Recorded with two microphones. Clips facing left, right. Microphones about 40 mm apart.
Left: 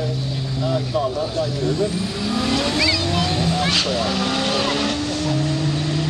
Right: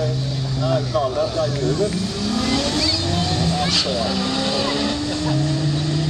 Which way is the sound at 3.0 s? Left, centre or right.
Left.